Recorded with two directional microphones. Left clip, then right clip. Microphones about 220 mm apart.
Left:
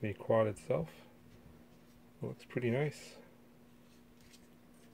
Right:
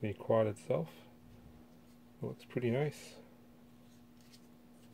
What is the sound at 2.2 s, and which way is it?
Speech, centre (ahead or behind).